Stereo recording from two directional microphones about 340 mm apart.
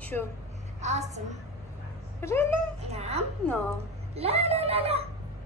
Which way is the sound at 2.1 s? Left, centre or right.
Centre.